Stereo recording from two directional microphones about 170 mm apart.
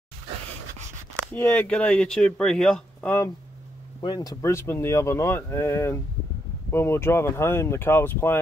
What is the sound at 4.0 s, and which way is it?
Speech, 25° left (ahead or behind).